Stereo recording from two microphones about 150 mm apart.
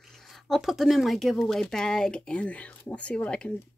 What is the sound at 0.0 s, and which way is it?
Speech, centre (ahead or behind).